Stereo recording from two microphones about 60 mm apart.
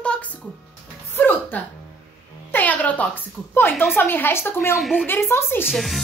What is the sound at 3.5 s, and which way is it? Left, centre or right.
A woman's voice, left.